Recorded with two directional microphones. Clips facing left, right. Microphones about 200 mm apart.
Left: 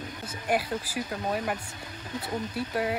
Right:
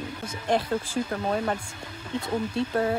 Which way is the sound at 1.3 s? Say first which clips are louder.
Right 3 dB; 30° right (ahead or behind).